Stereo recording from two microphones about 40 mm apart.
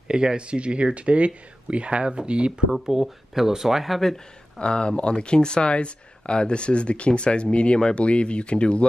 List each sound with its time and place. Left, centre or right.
0.1 s speech: right
2.7 s speech: centre
4.6 s speech: left